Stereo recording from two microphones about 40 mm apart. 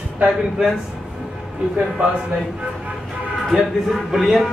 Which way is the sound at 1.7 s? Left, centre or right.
Right.